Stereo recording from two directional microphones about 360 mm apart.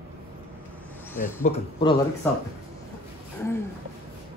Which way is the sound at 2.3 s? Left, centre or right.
Centre.